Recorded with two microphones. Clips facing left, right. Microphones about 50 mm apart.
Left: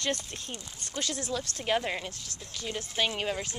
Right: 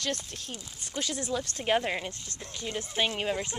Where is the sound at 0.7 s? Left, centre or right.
Centre.